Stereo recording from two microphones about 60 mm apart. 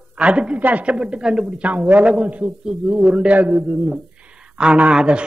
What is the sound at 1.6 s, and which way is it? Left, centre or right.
A man's voice, right.